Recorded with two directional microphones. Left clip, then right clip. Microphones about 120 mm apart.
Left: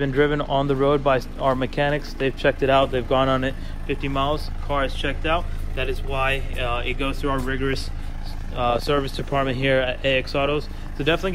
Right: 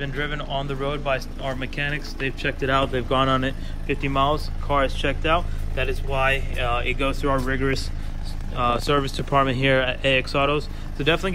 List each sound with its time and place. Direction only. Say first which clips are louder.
0.2 s speech: left 8 dB; 50° left (ahead or behind)
1.6 s speech: left 5 dB; 25° left (ahead or behind); by 3.5 s 5° left (ahead or behind)
3.8 s speech: right 2 dB; 20° left (ahead or behind)
11.0 s speech: even; 15° left (ahead or behind)